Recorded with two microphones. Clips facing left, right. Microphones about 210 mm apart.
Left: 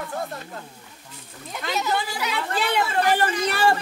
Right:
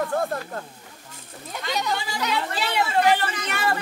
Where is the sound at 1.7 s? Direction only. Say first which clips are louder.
Left 1 dB; 5° left (ahead or behind).